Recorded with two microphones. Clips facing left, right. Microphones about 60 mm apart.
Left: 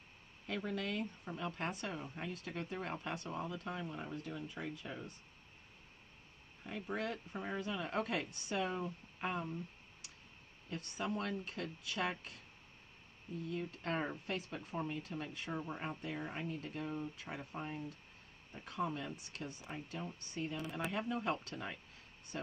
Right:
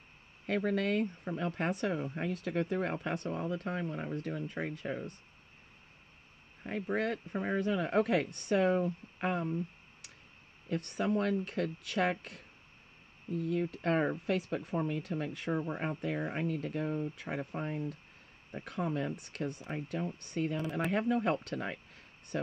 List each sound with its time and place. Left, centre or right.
0.5 s speech: right
6.6 s speech: right
10.7 s speech: right
14.2 s speech: right